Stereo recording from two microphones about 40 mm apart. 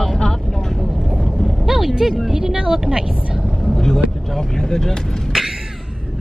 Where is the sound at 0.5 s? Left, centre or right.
Centre.